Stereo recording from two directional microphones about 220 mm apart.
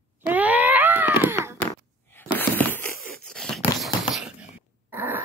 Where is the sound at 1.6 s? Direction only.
10° left (ahead or behind).